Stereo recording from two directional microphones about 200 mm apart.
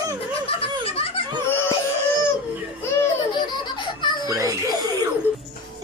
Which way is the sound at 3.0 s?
20° left (ahead or behind).